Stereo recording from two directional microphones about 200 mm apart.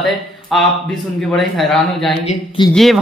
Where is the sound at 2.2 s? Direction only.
25° left (ahead or behind).